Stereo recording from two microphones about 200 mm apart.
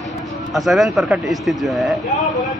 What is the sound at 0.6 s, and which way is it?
A man's voice, centre (ahead or behind).